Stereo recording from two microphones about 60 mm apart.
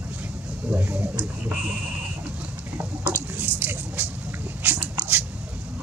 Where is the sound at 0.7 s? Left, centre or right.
Right.